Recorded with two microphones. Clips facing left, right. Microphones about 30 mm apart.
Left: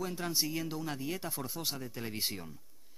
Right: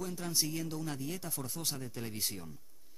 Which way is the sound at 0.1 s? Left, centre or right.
Left.